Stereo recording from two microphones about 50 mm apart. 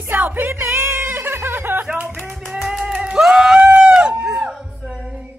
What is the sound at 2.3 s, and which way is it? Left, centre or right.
Music, centre.